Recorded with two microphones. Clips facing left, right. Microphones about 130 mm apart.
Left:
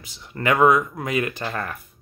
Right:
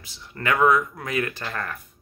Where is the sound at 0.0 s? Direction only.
15° left (ahead or behind).